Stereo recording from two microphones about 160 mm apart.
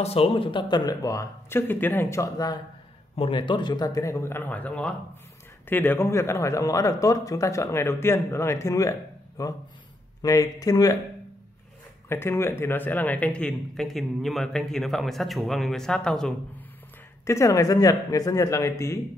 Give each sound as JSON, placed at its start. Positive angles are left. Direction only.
{"t": 0.0, "sound": "a man's voice", "side_deg": 40}
{"t": 12.1, "sound": "speech", "side_deg": 15}
{"t": 17.2, "sound": "a man's voice", "side_deg": 20}